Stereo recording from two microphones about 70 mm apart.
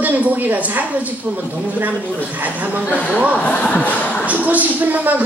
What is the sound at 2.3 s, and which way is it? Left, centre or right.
Speech, right.